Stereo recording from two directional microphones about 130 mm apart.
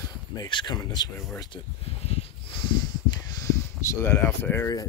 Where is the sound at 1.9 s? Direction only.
50° left (ahead or behind); by 4.7 s 20° left (ahead or behind).